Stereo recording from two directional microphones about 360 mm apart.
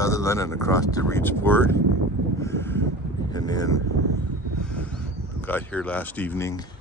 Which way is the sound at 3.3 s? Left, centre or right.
Centre.